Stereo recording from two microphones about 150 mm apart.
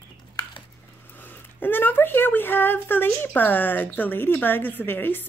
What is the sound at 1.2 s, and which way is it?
Speech, 10° left (ahead or behind).